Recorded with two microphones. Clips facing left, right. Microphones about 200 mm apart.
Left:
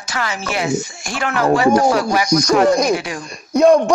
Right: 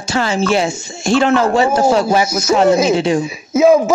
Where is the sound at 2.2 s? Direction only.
5° right (ahead or behind).